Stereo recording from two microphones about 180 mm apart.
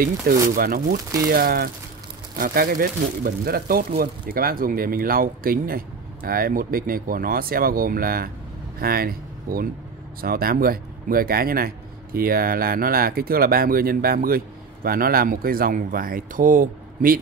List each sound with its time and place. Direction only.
0.3 s speech: 55° right (ahead or behind)